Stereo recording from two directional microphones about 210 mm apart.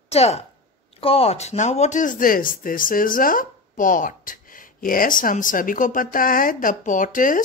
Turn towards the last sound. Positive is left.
turn(degrees=40)  # may be behind; listen again after turning